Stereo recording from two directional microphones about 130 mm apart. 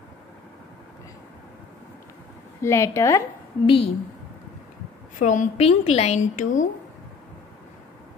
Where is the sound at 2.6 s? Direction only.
20° left (ahead or behind).